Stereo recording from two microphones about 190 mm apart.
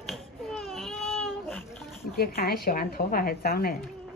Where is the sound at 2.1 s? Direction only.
50° left (ahead or behind).